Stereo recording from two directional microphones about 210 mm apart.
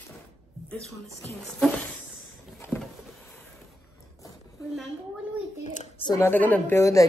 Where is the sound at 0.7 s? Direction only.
5° left (ahead or behind).